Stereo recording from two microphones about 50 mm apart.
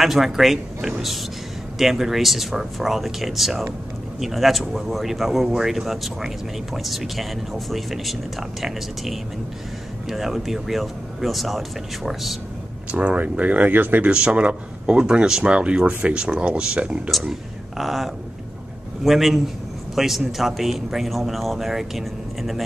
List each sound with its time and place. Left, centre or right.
0.0 s speech: centre
12.9 s speech: right
14.1 s speech: right
17.3 s speech: centre